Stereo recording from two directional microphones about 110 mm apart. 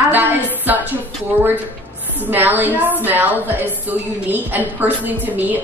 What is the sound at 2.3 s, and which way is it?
Speech, 15° right (ahead or behind).